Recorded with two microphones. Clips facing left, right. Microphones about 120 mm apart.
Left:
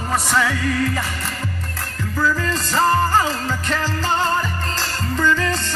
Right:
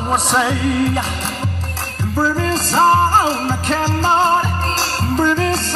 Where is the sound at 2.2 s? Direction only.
35° right (ahead or behind).